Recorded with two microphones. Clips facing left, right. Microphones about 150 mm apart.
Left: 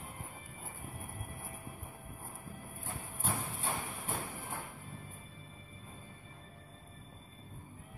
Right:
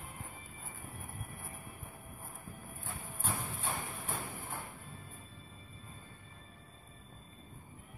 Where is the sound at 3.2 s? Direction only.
10° left (ahead or behind).